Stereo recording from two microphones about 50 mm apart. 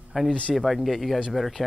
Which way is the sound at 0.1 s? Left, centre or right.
Centre.